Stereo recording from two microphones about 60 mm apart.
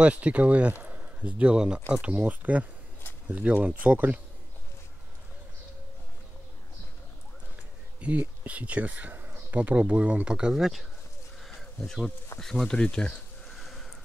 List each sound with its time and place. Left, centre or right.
0.0 s speech: right
2.1 s speech: right
8.0 s speech: right; by 10.9 s centre
11.4 s a sound: centre
12.4 s speech: centre
13.6 s a sound: centre